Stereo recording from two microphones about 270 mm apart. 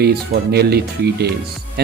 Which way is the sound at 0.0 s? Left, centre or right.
Right.